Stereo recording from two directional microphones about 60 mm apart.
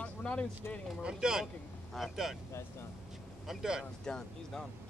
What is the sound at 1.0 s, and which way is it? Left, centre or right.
Speech, centre.